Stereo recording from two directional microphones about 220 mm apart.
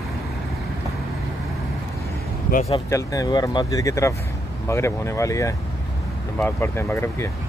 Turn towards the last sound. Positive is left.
turn(degrees=10)  # may be behind; listen again after turning